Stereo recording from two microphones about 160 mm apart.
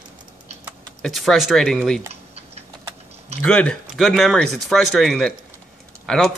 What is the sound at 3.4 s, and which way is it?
Speech, 5° left (ahead or behind).